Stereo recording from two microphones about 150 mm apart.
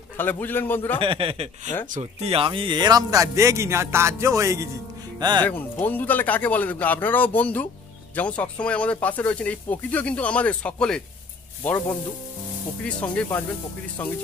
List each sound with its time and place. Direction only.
0.2 s speech: 15° left (ahead or behind)
1.0 s a man's voice: 35° right (ahead or behind); by 4.6 s 20° right (ahead or behind)
5.4 s speech: 10° left (ahead or behind)